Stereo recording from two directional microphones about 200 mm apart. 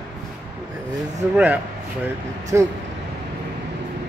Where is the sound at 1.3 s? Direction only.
5° right (ahead or behind).